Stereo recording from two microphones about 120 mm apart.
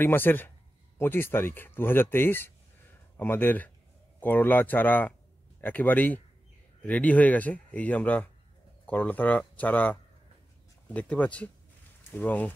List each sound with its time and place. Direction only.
0.0 s a man's voice: 15° left (ahead or behind)